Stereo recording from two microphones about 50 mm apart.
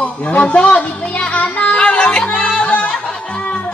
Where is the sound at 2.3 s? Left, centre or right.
Centre.